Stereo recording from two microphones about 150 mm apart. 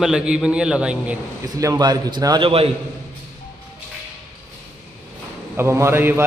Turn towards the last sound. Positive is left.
turn(degrees=-15)  # may be behind; listen again after turning